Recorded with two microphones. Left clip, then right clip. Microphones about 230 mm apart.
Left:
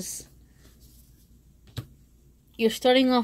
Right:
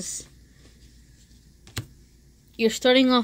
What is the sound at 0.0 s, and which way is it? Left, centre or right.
Speech, centre.